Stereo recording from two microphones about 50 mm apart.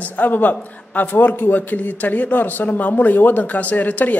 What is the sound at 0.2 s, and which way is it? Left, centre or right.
A man's voice, left.